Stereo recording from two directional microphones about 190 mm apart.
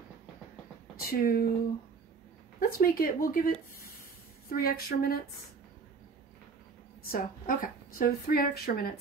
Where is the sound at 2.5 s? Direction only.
50° left (ahead or behind).